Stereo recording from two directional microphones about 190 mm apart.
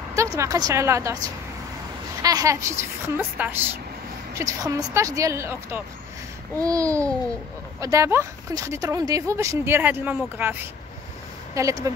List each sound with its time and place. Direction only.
0.1 s a woman's voice: 15° right (ahead or behind)